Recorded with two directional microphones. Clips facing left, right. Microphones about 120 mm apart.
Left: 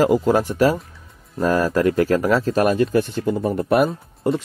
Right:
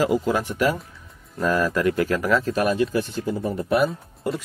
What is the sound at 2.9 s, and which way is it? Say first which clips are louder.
Speech: left 5 dB; 60° left (ahead or behind).